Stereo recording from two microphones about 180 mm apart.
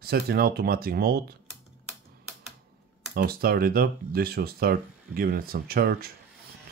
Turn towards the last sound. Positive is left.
turn(degrees=-60)  # may be behind; listen again after turning